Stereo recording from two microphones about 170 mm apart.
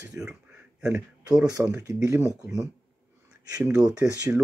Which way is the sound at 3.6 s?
5° right (ahead or behind).